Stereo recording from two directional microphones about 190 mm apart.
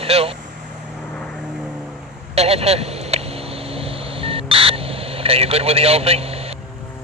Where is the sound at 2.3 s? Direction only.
35° right (ahead or behind).